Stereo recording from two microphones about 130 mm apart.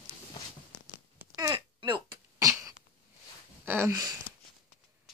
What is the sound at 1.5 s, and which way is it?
Throat clearing, 35° right (ahead or behind).